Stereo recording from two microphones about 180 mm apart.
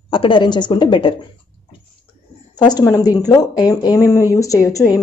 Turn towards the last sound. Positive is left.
turn(degrees=15)  # may be behind; listen again after turning